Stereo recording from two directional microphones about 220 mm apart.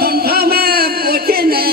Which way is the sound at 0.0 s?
45° right (ahead or behind).